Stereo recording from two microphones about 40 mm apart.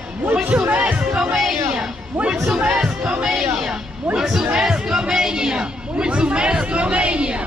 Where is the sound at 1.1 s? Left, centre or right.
Centre.